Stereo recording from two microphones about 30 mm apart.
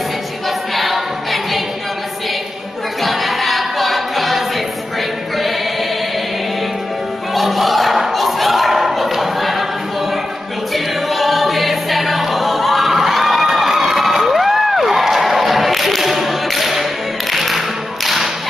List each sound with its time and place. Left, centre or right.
0.7 s choir: centre
3.0 s choir: centre
7.3 s a sound: centre
10.7 s choir: centre
17.3 s music: centre
18.0 s whip: centre